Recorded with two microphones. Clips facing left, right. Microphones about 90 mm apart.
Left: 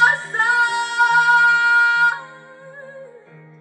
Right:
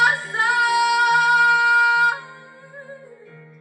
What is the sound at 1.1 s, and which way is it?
Music, 30° left (ahead or behind).